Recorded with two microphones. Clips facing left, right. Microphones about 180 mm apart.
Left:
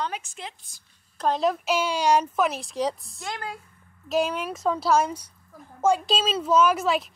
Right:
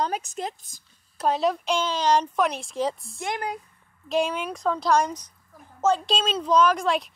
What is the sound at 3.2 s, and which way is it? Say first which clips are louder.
Speech: right 4 dB; 20° right (ahead or behind).